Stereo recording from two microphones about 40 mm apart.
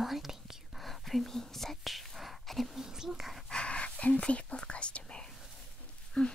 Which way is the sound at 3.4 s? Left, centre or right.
Left.